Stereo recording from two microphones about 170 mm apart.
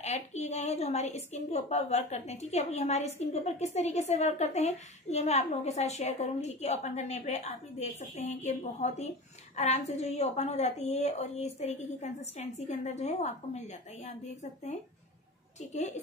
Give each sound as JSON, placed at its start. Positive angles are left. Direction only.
{"t": 0.0, "sound": "a woman's voice", "side_deg": 40}